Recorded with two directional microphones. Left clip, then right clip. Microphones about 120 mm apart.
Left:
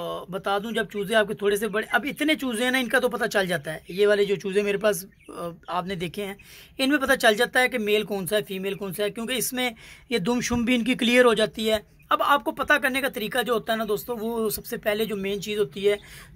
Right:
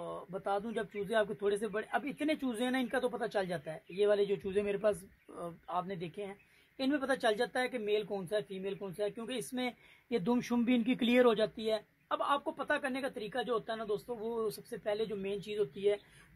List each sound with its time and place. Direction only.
0.0 s speech: 10° right (ahead or behind)